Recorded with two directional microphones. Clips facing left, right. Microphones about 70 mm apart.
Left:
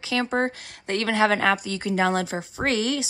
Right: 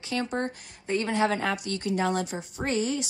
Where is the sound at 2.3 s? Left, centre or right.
Left.